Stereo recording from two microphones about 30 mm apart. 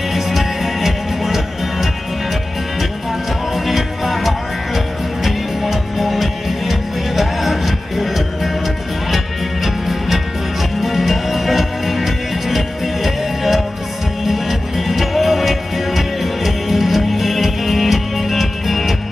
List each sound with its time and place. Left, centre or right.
0.1 s music: centre
3.5 s music: centre
9.8 s music: centre